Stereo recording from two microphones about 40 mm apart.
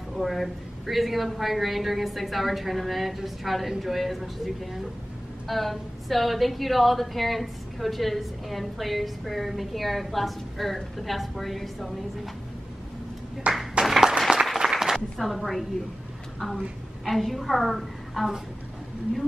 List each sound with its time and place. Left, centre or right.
0.1 s a woman's voice: centre
13.5 s speech: right
13.8 s applause: centre
15.1 s a woman's voice: centre